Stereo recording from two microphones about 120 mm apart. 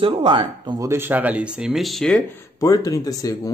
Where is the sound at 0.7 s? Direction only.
20° right (ahead or behind); by 2.2 s 5° left (ahead or behind).